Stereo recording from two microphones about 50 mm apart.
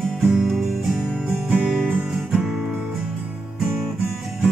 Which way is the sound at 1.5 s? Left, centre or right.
Centre.